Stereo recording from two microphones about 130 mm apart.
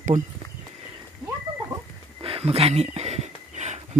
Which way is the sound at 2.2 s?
45° right (ahead or behind).